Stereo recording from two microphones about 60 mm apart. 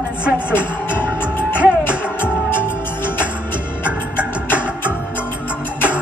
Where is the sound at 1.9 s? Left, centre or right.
Left.